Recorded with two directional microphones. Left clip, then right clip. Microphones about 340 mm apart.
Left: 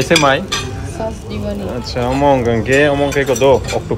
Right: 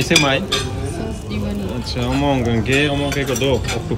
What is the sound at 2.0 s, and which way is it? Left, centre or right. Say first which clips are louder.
Speech: left 7 dB; centre.